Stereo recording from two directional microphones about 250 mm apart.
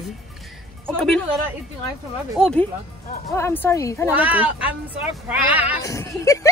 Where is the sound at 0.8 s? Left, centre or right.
Centre.